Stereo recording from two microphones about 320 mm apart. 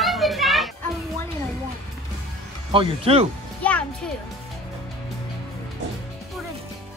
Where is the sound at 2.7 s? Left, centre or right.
Centre.